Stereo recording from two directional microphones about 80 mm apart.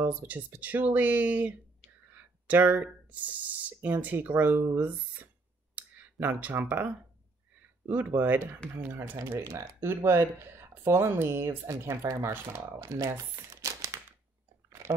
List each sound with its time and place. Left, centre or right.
0.0 s speech: right
5.8 s a sound: right
7.9 s speech: right
9.2 s speech: right
13.2 s crumpling: right
14.7 s chewing: right